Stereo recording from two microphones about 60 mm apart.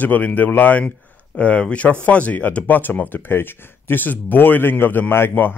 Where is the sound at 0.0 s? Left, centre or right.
Left.